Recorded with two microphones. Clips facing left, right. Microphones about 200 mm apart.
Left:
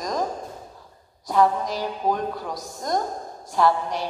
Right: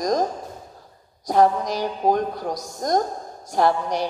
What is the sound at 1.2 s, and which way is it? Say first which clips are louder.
A woman's voice: right 2 dB; 45° right (ahead or behind).